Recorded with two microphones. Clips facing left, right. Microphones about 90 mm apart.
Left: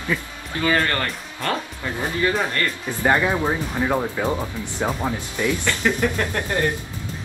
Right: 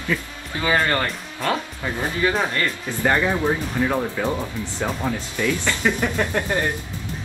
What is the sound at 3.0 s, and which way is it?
Speech, 20° left (ahead or behind).